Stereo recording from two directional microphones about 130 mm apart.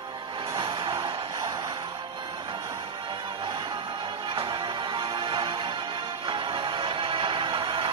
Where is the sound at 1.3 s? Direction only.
25° right (ahead or behind).